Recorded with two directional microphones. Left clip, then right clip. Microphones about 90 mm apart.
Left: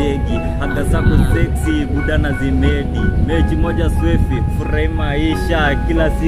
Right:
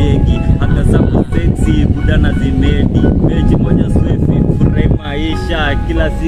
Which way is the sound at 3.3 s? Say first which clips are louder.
Right 3 dB; 15° right (ahead or behind).